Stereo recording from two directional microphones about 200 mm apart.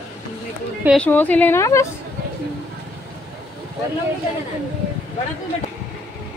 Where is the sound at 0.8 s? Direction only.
5° left (ahead or behind).